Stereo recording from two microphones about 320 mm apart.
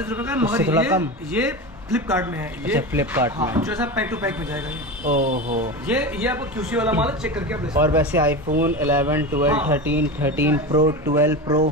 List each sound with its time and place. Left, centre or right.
0.1 s a man's voice: centre
5.0 s speech: right
5.9 s a man's voice: centre